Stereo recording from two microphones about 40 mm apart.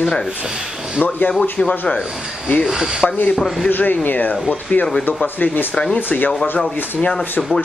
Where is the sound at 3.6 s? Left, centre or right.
Left.